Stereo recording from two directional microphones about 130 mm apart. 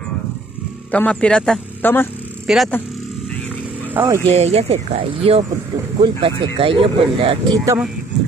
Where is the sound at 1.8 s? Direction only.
15° left (ahead or behind).